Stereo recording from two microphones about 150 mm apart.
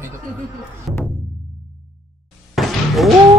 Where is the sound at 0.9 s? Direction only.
Centre (ahead or behind).